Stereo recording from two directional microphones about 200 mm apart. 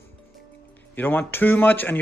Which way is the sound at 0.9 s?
10° left (ahead or behind).